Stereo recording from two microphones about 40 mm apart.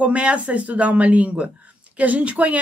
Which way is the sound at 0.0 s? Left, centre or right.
Right.